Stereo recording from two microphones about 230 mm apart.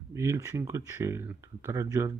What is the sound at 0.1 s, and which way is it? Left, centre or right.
Speech, centre.